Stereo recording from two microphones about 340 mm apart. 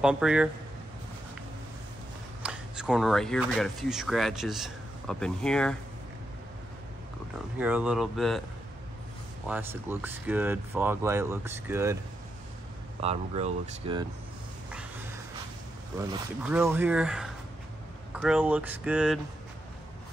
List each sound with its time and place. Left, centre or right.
0.0 s speech: centre
2.4 s speech: centre
7.5 s speech: centre
9.5 s speech: centre
13.0 s speech: centre
14.7 s cat: centre
16.0 s speech: centre